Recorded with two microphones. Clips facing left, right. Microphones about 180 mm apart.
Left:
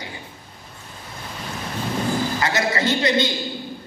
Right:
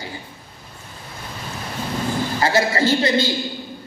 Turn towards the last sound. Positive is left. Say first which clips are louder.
# right 2 dB
turn(degrees=-30)  # may be behind; listen again after turning